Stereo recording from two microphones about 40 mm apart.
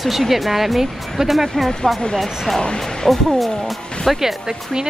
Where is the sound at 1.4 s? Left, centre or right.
Centre.